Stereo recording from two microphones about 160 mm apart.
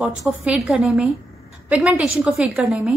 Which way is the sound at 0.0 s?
5° right (ahead or behind).